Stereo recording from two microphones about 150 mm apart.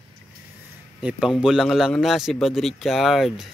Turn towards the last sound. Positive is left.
turn(degrees=0)  # may be behind; listen again after turning